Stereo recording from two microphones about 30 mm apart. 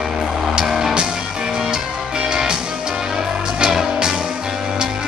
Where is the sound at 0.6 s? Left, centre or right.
Centre.